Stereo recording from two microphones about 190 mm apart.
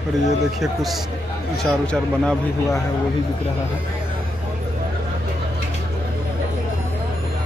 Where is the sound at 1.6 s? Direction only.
5° left (ahead or behind).